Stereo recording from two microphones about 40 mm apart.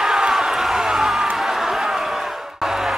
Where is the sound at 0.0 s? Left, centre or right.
Centre.